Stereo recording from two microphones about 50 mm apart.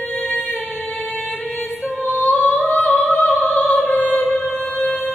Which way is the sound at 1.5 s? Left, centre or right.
Centre.